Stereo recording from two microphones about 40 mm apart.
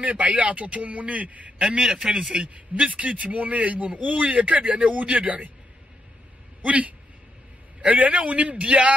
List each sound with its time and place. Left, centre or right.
0.0 s a man's voice: right
1.7 s a man's voice: right
2.3 s a man's voice: right
6.6 s a man's voice: right